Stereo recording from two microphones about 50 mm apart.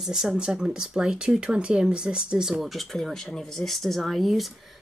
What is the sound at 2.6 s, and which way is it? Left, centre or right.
Speech, centre.